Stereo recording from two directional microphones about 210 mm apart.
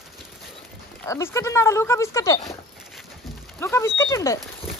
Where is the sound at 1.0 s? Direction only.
15° left (ahead or behind).